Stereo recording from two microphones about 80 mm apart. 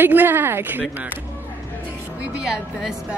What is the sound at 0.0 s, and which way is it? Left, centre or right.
Speech, right.